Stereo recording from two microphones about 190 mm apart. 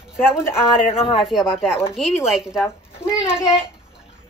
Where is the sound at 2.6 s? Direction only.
15° left (ahead or behind).